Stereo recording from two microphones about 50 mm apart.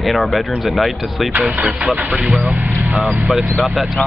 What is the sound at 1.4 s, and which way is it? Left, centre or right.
Speech, right.